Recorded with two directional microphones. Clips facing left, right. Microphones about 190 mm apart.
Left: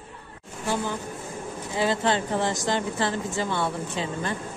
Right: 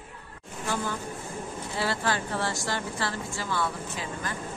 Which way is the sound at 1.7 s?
20° left (ahead or behind).